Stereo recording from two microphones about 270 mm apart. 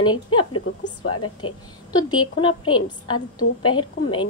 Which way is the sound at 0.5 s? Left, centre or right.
Left.